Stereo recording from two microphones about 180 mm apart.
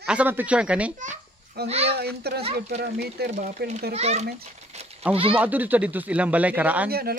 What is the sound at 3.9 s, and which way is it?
A child's voice, 35° right (ahead or behind).